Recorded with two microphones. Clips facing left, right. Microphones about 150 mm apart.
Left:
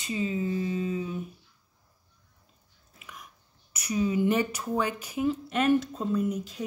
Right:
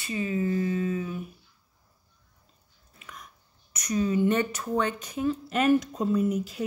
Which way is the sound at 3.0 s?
5° left (ahead or behind).